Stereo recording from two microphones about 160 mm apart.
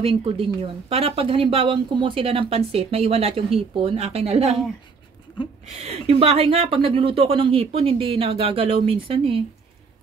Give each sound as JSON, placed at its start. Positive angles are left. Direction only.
{"t": 0.0, "sound": "speech", "side_deg": -35}
{"t": 5.8, "sound": "speech", "side_deg": -40}